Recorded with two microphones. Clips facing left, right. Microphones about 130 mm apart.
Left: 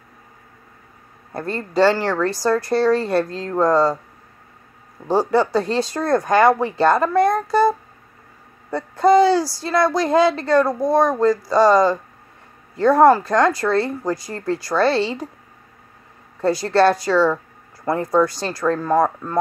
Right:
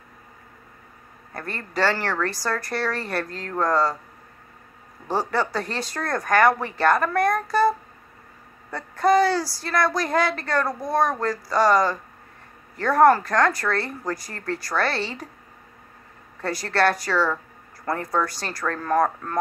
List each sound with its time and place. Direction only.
1.3 s a woman's voice: 25° left (ahead or behind)
5.0 s a woman's voice: 20° left (ahead or behind)
16.3 s a woman's voice: 25° left (ahead or behind)